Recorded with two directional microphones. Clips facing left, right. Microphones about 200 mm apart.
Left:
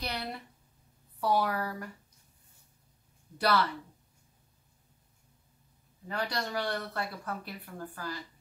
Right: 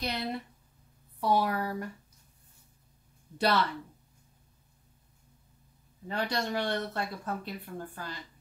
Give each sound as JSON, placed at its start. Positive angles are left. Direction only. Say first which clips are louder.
{"t": 0.0, "sound": "speech", "louder": "right 4 dB", "side_deg": -20}
{"t": 3.3, "sound": "speech", "louder": "right 1 dB", "side_deg": -25}
{"t": 6.0, "sound": "speech", "louder": "right 3 dB", "side_deg": -25}